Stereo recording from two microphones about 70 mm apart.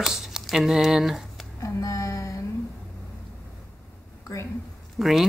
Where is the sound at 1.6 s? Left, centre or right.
Left.